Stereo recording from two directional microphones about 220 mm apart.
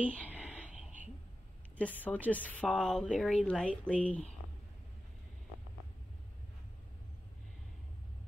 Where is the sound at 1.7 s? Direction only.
5° left (ahead or behind).